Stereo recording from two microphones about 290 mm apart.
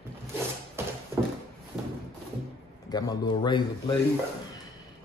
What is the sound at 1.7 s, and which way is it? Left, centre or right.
Thump, centre.